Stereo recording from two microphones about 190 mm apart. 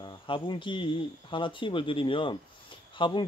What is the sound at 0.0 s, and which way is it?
Speech, 25° left (ahead or behind).